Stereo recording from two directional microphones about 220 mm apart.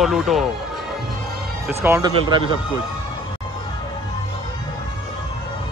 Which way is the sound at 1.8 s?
10° right (ahead or behind).